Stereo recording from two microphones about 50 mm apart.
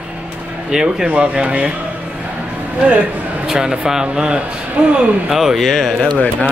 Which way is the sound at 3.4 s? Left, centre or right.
Centre.